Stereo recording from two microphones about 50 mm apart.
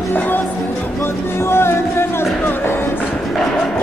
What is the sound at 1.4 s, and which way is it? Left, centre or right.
Music, left.